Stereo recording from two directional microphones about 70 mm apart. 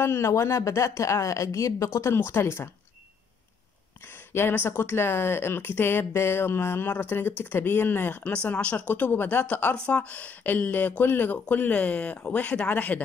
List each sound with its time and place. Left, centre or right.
0.0 s speech: left
2.1 s speech: left
4.3 s speech: left